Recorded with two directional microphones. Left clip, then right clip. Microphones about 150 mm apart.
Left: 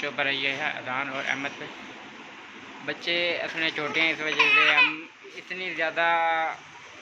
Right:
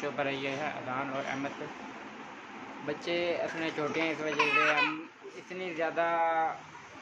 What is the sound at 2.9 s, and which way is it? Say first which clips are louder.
Speech: left 5 dB; 15° right (ahead or behind).